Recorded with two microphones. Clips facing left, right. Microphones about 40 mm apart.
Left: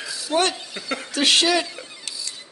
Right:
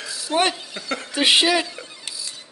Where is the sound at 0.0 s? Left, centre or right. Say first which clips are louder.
Left 1 dB; centre.